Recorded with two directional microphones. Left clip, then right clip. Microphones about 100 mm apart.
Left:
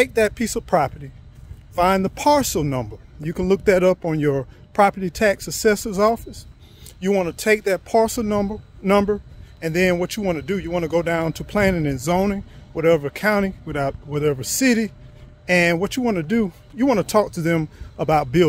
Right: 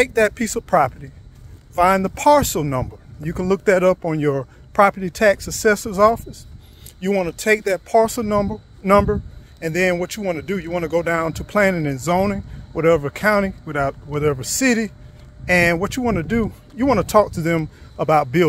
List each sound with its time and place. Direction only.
0.0 s speech: 25° left (ahead or behind)